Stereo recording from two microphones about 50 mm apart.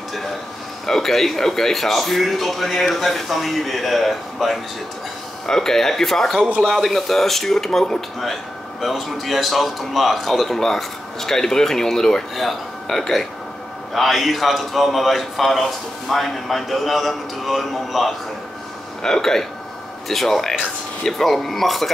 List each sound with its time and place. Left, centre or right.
0.8 s speech: centre
19.0 s speech: centre